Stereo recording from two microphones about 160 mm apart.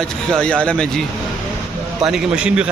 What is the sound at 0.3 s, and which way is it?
Speech, 5° left (ahead or behind).